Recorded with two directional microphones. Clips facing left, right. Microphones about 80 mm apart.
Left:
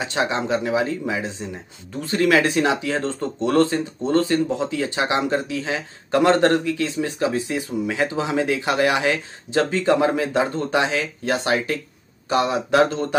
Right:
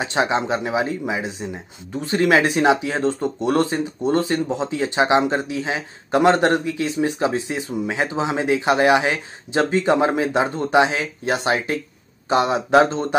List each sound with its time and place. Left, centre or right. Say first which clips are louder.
0.0 s speech: right 2 dB; right